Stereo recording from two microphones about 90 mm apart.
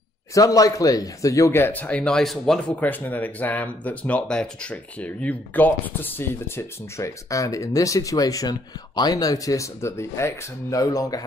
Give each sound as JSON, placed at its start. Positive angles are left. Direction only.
{"t": 0.3, "sound": "speech", "side_deg": 40}
{"t": 2.7, "sound": "speech", "side_deg": 20}